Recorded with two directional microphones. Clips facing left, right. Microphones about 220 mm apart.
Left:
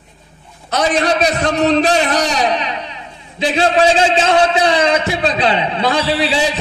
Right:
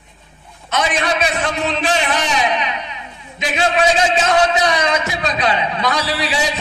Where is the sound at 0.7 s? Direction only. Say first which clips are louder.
Left 4 dB; 35° left (ahead or behind).